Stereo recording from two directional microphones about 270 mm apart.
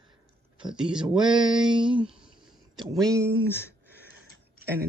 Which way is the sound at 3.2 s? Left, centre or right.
Centre.